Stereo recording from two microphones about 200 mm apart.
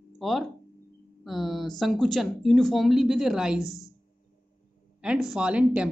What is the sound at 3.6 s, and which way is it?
Speech, 15° left (ahead or behind).